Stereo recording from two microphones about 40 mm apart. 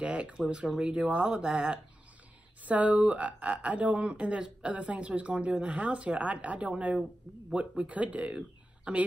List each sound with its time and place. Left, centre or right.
0.0 s speech: right
0.3 s speech: right
1.0 s speech: right
2.6 s speech: right